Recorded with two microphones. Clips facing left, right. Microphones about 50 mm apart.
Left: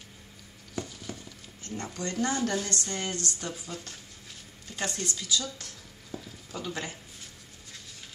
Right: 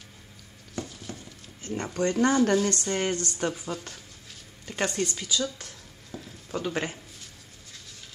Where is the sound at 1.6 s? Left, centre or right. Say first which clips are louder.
Right 5 dB; right.